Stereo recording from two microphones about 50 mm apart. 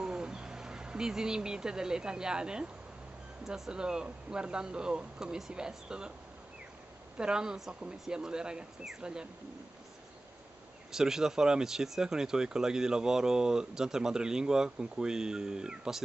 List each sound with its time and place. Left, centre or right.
0.0 s speech: centre
7.2 s speech: centre
10.9 s speech: centre